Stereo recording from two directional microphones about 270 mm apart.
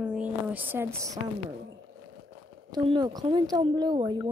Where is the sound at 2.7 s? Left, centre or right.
Centre.